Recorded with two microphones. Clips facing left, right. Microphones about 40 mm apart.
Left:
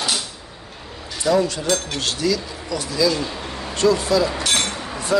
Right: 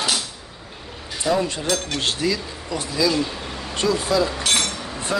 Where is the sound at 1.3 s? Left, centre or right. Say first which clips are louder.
Left 4 dB; right.